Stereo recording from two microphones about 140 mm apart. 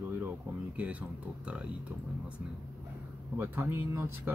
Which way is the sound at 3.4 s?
15° right (ahead or behind).